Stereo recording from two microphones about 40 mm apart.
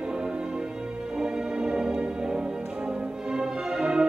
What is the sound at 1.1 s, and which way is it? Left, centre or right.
Music, centre.